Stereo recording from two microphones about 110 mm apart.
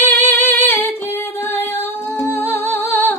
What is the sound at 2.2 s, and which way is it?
Music, 20° left (ahead or behind).